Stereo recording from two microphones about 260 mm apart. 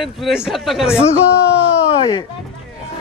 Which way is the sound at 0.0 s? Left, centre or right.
Centre.